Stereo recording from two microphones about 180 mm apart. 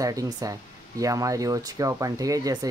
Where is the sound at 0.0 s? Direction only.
20° right (ahead or behind).